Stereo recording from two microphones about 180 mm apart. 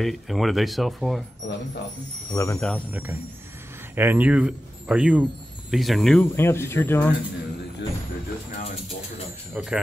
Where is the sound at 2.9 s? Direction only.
10° right (ahead or behind).